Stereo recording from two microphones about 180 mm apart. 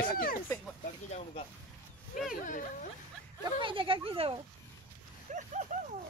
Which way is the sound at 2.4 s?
45° left (ahead or behind).